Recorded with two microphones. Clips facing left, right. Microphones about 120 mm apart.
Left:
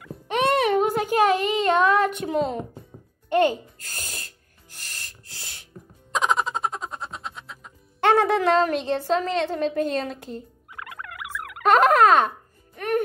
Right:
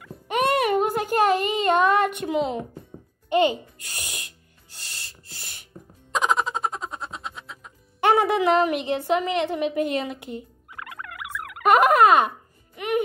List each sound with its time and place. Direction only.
0.0 s music: centre (ahead or behind)
1.1 s a child's voice: centre (ahead or behind)
3.3 s speech: 15° right (ahead or behind)
3.8 s owl: 10° right (ahead or behind)
6.1 s music: centre (ahead or behind)
8.0 s a woman's voice: 10° right (ahead or behind)
12.7 s music: 10° right (ahead or behind)